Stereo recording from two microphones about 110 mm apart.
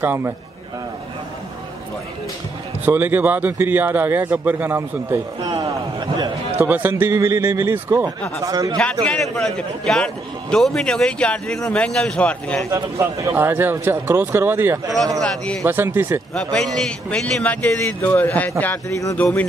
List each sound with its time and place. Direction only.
0.0 s a man's voice: 20° right (ahead or behind)
2.8 s speech: 15° right (ahead or behind)
5.6 s a man's voice: 40° right (ahead or behind)
6.6 s a man's voice: 15° right (ahead or behind)
8.5 s a man's voice: 35° right (ahead or behind)
9.0 s a man's voice: 5° left (ahead or behind)
12.7 s a man's voice: 30° right (ahead or behind)
15.1 s a man's voice: 10° left (ahead or behind)
15.6 s a man's voice: 20° right (ahead or behind)
16.5 s a man's voice: 5° left (ahead or behind)